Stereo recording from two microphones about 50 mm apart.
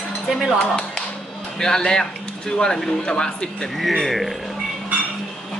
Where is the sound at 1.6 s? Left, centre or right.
Centre.